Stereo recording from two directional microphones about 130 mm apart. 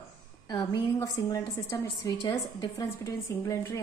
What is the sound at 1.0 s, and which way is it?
A woman's voice, 25° left (ahead or behind).